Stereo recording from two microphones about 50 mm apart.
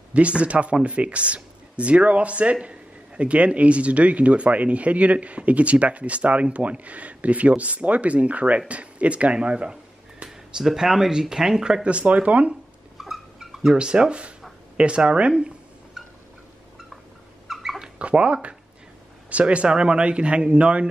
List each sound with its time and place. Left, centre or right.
0.1 s speech: right
10.6 s speech: centre; by 12.5 s right
12.9 s a sound: centre
13.7 s speech: centre
17.5 s dog: centre
17.7 s dog: right
19.3 s speech: right